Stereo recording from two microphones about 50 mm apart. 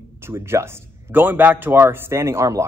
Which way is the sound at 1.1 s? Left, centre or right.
Right.